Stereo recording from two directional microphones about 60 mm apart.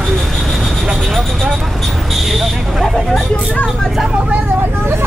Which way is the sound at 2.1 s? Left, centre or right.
Centre.